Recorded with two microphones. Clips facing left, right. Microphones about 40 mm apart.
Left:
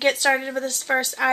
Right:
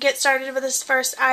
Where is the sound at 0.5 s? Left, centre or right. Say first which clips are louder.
Right 2 dB; centre.